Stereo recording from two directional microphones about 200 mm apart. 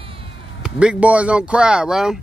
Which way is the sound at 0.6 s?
5° right (ahead or behind).